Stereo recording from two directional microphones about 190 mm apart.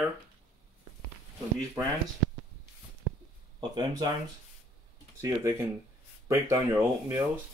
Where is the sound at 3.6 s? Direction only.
20° right (ahead or behind).